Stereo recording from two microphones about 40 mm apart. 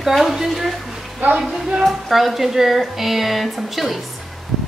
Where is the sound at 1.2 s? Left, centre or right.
Right.